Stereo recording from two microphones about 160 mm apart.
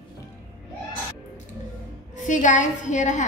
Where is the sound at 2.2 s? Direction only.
50° left (ahead or behind).